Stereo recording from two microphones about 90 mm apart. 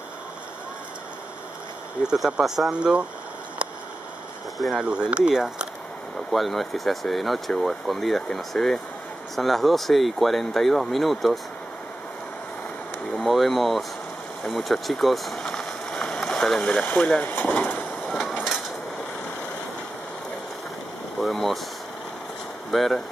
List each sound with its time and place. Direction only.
2.0 s speech: 10° right (ahead or behind)
4.6 s speech: centre (ahead or behind)
4.8 s speech: 10° right (ahead or behind)
6.3 s speech: centre (ahead or behind)
13.2 s speech: centre (ahead or behind)
14.4 s vehicle: centre (ahead or behind)
16.8 s speech: 15° left (ahead or behind)
18.0 s vehicle: centre (ahead or behind)
21.2 s speech: centre (ahead or behind)
22.7 s speech: centre (ahead or behind)